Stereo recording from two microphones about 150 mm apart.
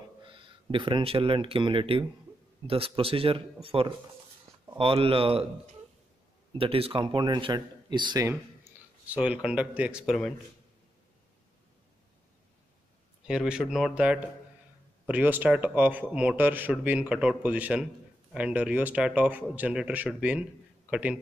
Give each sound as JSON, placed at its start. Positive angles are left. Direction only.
{"t": 0.2, "sound": "speech", "side_deg": -35}
{"t": 9.0, "sound": "speech", "side_deg": -10}
{"t": 13.3, "sound": "speech", "side_deg": -5}